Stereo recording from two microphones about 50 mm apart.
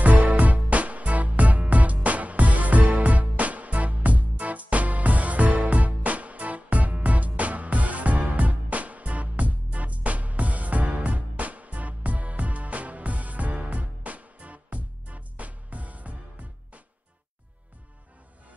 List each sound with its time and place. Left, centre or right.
0.0 s music: right